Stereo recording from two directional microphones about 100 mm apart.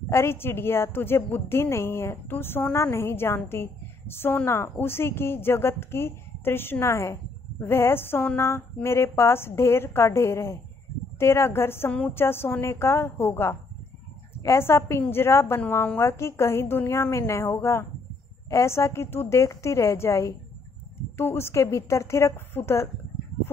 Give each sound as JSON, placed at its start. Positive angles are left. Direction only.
{"t": 0.1, "sound": "a woman's voice", "side_deg": 25}